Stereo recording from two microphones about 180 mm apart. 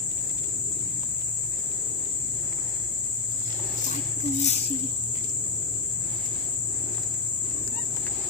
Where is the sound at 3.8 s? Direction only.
40° left (ahead or behind).